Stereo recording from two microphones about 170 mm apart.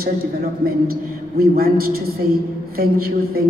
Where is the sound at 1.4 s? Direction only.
60° right (ahead or behind).